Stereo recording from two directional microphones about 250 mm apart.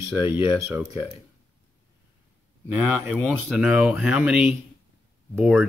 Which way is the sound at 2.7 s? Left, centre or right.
Centre.